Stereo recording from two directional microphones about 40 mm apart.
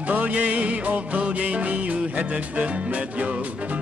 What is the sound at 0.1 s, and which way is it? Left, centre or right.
Music, right.